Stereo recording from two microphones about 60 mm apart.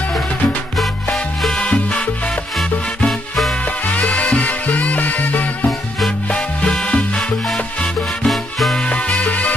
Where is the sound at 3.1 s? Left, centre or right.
Centre.